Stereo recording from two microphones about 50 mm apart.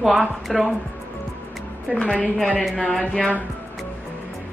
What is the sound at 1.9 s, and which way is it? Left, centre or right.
Speech, centre.